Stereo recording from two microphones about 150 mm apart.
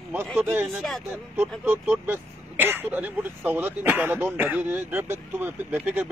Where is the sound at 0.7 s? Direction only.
5° left (ahead or behind).